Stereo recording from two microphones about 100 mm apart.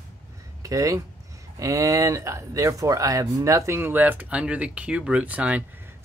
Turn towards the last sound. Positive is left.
turn(degrees=-15)  # may be behind; listen again after turning